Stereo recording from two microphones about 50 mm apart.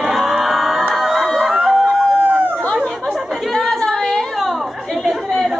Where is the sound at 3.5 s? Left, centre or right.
Centre.